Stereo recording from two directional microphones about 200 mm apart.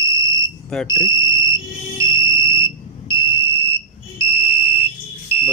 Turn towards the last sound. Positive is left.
turn(degrees=-10)  # may be behind; listen again after turning